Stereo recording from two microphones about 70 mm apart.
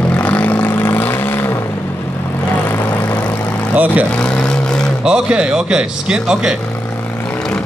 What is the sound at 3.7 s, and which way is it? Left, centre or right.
Speech, right.